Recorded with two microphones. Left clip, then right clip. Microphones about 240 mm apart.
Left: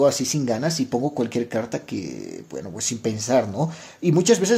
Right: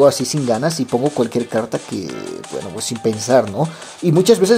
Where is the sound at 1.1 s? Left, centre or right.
Centre.